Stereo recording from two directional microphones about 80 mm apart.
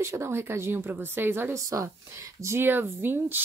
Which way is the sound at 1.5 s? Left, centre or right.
Right.